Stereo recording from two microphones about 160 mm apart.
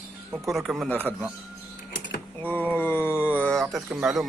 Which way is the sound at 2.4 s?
10° left (ahead or behind).